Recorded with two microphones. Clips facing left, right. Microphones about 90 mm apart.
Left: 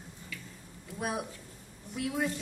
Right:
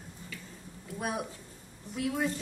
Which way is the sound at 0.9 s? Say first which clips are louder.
Even; centre (ahead or behind).